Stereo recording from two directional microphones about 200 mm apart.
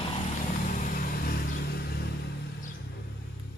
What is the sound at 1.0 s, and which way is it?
Vehicle, 45° left (ahead or behind).